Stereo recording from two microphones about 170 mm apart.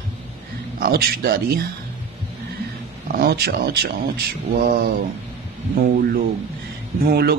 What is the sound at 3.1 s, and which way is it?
Speech, 65° right (ahead or behind).